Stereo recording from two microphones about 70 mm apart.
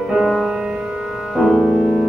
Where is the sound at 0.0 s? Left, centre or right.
Centre.